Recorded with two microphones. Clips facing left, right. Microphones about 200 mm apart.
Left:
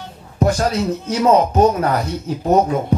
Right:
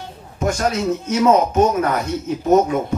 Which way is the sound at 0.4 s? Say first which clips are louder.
Left 2 dB; 35° left (ahead or behind).